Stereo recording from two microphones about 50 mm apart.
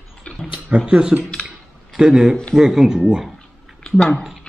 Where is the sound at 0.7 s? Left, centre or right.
Right.